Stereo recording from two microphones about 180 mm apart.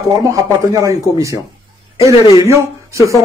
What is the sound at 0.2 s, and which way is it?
Speech, 20° right (ahead or behind).